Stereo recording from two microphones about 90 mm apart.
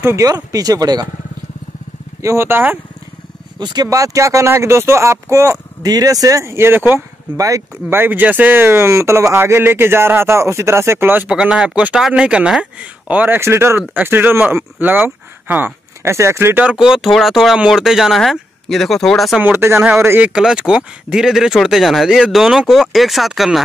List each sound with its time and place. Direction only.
0.0 s speech: 35° right (ahead or behind)
2.2 s speech: 25° right (ahead or behind)
3.5 s speech: 50° right (ahead or behind); by 7.0 s 20° right (ahead or behind)
7.3 s speech: 40° right (ahead or behind)
7.9 s speech: 20° right (ahead or behind)
11.2 s speech: 10° right (ahead or behind)
13.1 s speech: 20° right (ahead or behind)
16.6 s speech: 5° right (ahead or behind)
19.4 s speech: 25° right (ahead or behind); by 23.6 s centre (ahead or behind)